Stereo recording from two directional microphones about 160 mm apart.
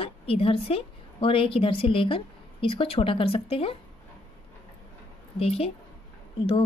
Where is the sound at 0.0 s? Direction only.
35° left (ahead or behind).